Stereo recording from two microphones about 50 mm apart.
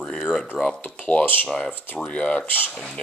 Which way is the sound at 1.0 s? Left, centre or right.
Left.